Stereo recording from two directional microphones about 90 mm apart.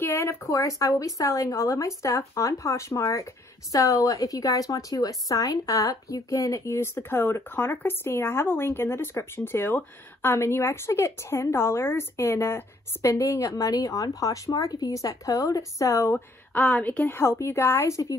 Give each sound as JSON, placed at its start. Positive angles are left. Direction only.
{"t": 0.0, "sound": "a woman's voice", "side_deg": 30}
{"t": 16.5, "sound": "speech", "side_deg": 15}